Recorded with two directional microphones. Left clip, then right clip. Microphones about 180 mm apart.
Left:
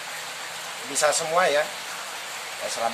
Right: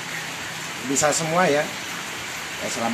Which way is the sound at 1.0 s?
Centre (ahead or behind).